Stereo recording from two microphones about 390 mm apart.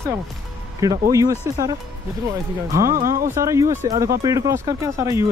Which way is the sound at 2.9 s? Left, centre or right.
Right.